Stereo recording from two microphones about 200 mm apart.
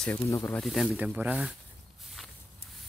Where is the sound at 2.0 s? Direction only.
Centre (ahead or behind).